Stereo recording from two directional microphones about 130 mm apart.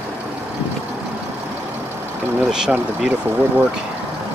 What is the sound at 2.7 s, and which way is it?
Speech, 15° right (ahead or behind).